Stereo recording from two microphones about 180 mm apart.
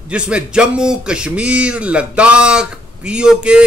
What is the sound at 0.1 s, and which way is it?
A man's voice, 5° right (ahead or behind).